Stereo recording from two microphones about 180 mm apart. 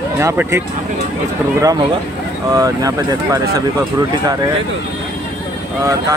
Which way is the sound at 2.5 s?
20° right (ahead or behind).